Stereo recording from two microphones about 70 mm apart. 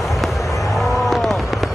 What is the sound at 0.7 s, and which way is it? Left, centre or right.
Fireworks, centre.